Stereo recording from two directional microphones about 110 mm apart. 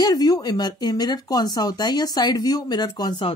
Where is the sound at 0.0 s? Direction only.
35° left (ahead or behind).